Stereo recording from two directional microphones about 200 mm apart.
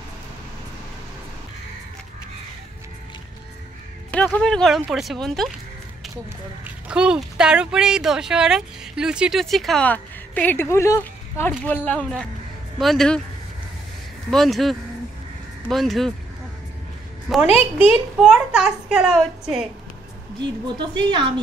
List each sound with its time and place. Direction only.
4.1 s speech: 5° left (ahead or behind)
6.6 s speech: 5° right (ahead or behind)
14.3 s speech: centre (ahead or behind)
17.3 s speech: 5° right (ahead or behind)
20.3 s a woman's voice: 20° right (ahead or behind)